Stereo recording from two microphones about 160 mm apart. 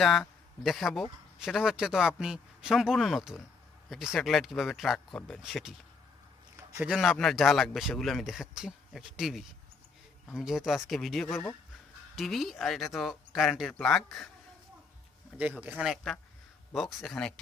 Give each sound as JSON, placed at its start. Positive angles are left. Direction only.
{"t": 0.0, "sound": "a man's voice", "side_deg": 0}
{"t": 6.5, "sound": "a sound", "side_deg": -20}
{"t": 6.9, "sound": "speech", "side_deg": 0}
{"t": 15.6, "sound": "speech", "side_deg": -5}